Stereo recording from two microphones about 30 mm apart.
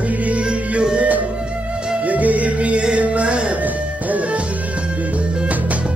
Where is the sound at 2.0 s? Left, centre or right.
Right.